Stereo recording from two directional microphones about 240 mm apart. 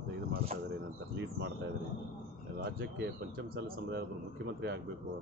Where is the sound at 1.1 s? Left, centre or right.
Right.